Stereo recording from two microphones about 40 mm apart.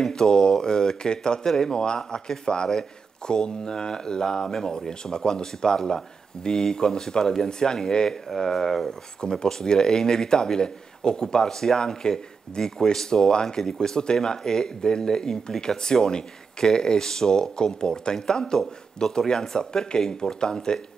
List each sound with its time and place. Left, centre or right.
0.0 s speech: centre
9.2 s speech: centre